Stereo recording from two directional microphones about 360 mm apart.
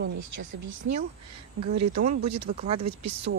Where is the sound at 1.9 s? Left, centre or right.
Centre.